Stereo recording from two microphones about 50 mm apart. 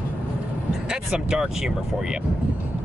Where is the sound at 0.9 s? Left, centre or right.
Centre.